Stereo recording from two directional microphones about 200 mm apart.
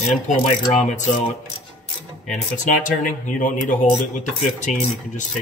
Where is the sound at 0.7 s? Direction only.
35° left (ahead or behind).